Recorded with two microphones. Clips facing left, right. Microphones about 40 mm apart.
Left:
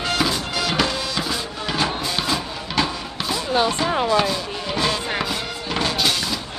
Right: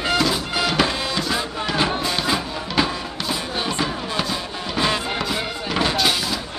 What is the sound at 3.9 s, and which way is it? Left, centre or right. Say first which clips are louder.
Music: left 8 dB; left.